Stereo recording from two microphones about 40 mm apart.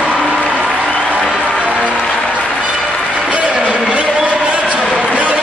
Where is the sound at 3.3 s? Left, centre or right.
Right.